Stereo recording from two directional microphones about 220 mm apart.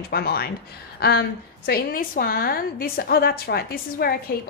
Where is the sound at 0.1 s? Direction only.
45° left (ahead or behind).